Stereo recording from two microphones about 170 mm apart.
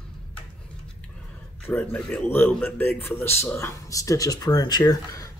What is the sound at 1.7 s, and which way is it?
Speech, 10° left (ahead or behind).